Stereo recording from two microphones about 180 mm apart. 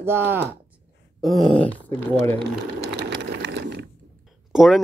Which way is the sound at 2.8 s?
75° right (ahead or behind).